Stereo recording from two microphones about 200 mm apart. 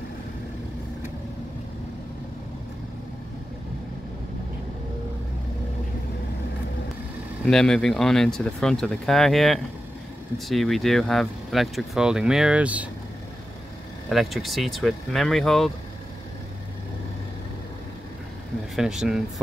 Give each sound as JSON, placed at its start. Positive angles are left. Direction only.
{"t": 7.4, "sound": "speech", "side_deg": 5}
{"t": 14.0, "sound": "speech", "side_deg": 0}
{"t": 18.8, "sound": "speech", "side_deg": 0}